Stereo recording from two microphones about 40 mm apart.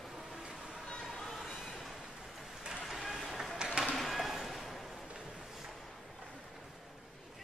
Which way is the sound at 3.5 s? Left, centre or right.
Centre.